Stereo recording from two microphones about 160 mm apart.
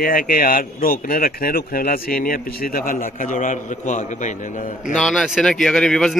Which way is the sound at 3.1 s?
50° left (ahead or behind).